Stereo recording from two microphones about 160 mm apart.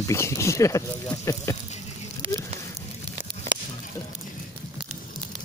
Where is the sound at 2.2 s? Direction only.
35° right (ahead or behind).